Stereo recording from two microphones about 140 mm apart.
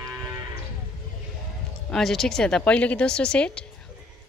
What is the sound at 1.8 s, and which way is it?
Speech, centre (ahead or behind).